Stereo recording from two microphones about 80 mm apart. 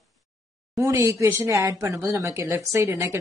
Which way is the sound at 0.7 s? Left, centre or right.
Right.